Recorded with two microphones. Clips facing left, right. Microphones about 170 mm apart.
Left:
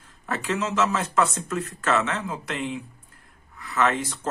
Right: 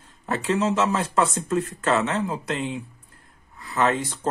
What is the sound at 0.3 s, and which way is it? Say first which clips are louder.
Speech: right 4 dB; 35° right (ahead or behind).